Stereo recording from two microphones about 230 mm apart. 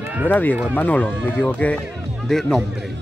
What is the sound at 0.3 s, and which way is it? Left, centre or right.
Speech, centre.